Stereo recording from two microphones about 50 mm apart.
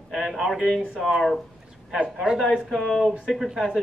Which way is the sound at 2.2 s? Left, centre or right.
Centre.